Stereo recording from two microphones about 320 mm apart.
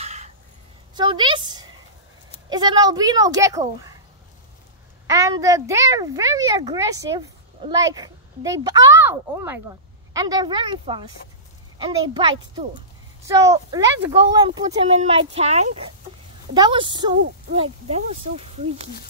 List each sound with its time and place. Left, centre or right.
0.0 s a sound: right
2.5 s a child's voice: centre
5.0 s a child's voice: centre